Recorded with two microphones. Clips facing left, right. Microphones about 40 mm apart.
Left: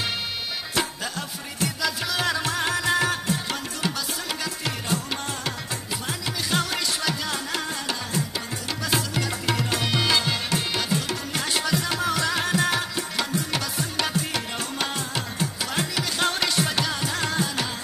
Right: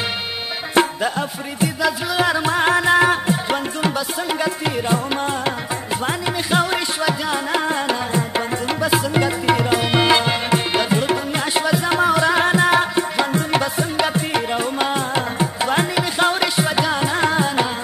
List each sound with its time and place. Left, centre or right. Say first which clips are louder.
0.8 s music: right 10 dB; right
1.6 s music: right 7 dB; centre
6.5 s music: right 6 dB; right